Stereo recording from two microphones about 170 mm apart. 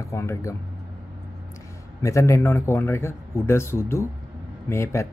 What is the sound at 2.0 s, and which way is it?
A man's voice, 20° left (ahead or behind).